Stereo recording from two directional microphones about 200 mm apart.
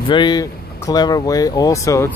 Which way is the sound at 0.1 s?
20° left (ahead or behind).